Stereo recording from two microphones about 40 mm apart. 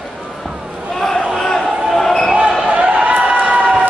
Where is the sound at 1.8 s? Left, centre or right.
Centre.